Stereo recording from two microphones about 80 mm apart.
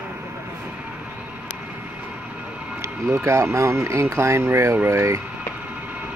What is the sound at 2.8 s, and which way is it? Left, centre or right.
Speech, right.